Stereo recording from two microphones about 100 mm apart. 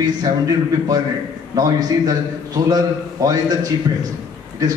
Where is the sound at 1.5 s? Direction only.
40° right (ahead or behind).